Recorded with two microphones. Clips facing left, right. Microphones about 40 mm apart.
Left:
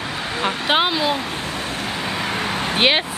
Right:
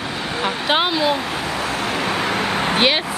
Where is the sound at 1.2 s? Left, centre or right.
Right.